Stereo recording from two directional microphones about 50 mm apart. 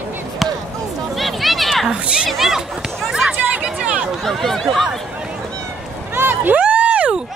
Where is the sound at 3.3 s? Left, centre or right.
Right.